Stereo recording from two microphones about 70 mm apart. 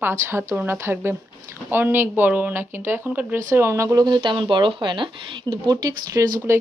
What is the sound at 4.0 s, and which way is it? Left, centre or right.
Speech, right.